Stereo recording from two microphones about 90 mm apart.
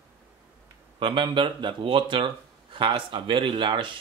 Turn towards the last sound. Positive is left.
turn(degrees=-65)  # may be behind; listen again after turning